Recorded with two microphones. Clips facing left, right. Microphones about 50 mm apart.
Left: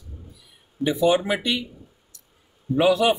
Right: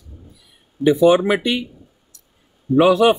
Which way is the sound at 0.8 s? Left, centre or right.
Right.